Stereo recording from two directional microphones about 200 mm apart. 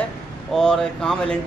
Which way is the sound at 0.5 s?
5° left (ahead or behind).